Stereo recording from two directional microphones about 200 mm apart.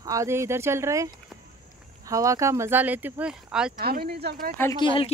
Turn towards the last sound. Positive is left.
turn(degrees=25)  # may be behind; listen again after turning